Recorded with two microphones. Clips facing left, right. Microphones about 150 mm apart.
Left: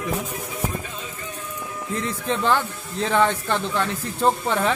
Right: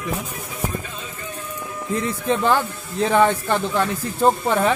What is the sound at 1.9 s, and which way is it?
Speech, 10° right (ahead or behind).